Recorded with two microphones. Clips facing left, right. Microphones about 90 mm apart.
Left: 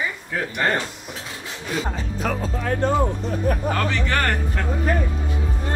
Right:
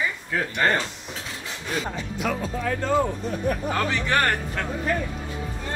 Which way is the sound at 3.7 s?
10° right (ahead or behind).